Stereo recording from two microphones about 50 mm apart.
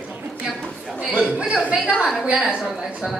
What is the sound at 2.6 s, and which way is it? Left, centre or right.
Speech, centre.